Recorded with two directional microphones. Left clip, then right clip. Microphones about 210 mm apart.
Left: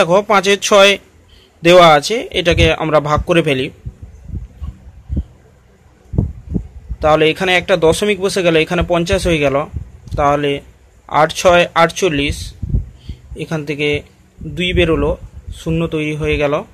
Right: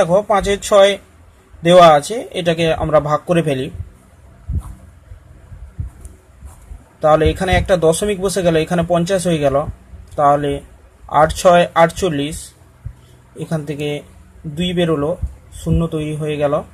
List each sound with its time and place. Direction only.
0.0 s speech: 15° left (ahead or behind)
7.0 s speech: 5° left (ahead or behind)
13.4 s speech: 5° left (ahead or behind)